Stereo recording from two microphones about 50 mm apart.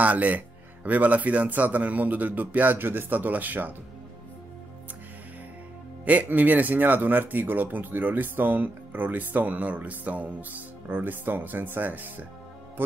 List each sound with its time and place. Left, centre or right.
0.0 s speech: right
6.0 s speech: right